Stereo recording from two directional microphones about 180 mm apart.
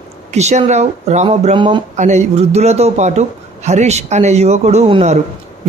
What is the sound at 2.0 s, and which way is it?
Speech, 40° right (ahead or behind).